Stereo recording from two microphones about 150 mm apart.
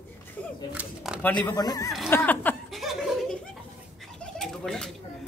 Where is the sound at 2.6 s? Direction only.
Centre (ahead or behind).